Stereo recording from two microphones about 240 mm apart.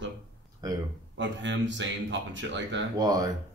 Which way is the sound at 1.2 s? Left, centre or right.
Right.